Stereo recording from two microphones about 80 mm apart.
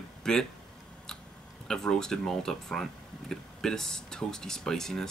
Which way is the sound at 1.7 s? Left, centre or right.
Centre.